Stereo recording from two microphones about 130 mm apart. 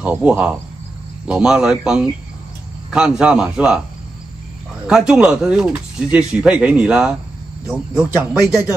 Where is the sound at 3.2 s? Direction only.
10° right (ahead or behind).